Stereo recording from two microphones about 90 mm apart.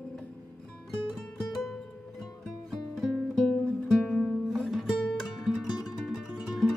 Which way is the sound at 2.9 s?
5° left (ahead or behind).